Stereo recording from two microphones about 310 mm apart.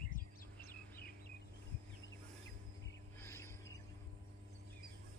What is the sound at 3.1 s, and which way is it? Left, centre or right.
Music, centre.